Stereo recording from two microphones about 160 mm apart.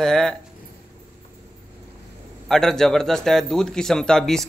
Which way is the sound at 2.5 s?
5° left (ahead or behind).